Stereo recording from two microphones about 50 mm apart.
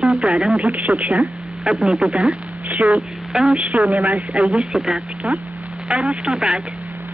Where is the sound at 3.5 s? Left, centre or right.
Right.